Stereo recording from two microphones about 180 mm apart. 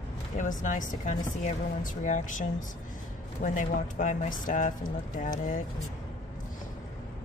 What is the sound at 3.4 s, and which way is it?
Speech, 45° left (ahead or behind).